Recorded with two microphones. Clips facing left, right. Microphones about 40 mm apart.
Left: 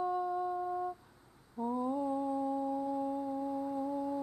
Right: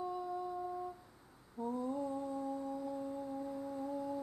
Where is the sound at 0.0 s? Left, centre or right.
Left.